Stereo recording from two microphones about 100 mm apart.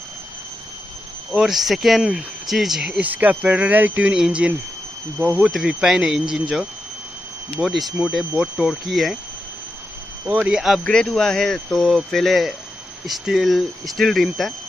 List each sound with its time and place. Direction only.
1.3 s speech: 5° right (ahead or behind)
7.6 s speech: centre (ahead or behind)
10.3 s speech: 10° right (ahead or behind)
10.8 s speech: 10° left (ahead or behind)